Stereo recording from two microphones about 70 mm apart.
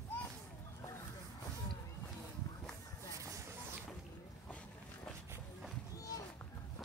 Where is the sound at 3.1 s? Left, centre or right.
Right.